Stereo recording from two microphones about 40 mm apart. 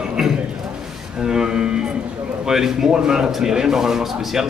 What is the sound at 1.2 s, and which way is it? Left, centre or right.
A man's voice, centre.